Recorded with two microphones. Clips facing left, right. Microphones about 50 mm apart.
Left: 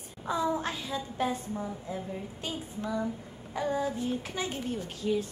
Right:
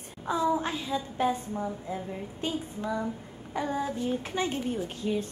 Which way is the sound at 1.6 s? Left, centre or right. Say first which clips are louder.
Right 3 dB; right.